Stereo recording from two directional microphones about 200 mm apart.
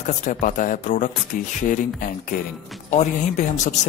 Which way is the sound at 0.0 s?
40° left (ahead or behind).